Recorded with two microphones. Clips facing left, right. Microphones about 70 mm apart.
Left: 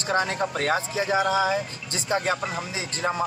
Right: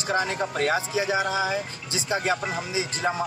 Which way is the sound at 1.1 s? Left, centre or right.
Left.